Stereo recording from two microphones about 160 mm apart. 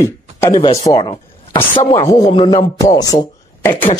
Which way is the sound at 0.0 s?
15° left (ahead or behind).